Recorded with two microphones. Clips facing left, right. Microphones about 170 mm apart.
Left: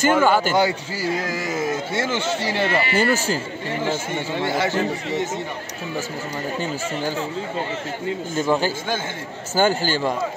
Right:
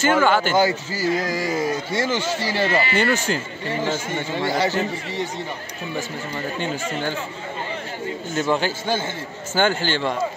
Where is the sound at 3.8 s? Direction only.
15° left (ahead or behind).